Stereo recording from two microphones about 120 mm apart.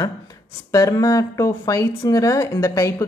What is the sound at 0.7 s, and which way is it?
Speech, 25° left (ahead or behind).